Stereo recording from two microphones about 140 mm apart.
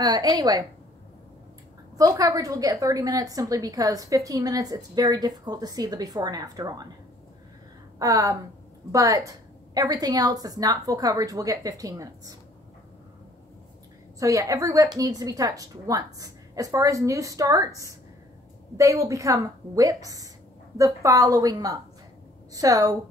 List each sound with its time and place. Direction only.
0.0 s a woman's voice: 30° right (ahead or behind)
2.0 s a woman's voice: 25° right (ahead or behind)
8.0 s a woman's voice: 25° right (ahead or behind)
14.2 s a woman's voice: 25° right (ahead or behind)